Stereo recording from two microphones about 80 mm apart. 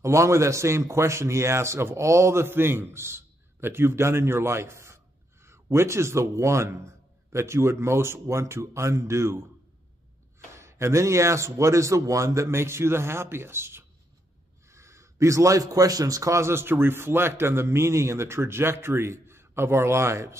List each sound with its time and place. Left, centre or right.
0.0 s speech: right
10.6 s speech: right